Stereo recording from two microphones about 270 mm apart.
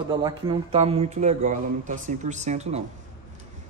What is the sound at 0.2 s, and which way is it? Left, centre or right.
Speech, centre.